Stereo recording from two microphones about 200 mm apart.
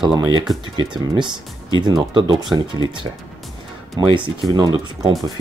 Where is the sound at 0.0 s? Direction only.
20° right (ahead or behind).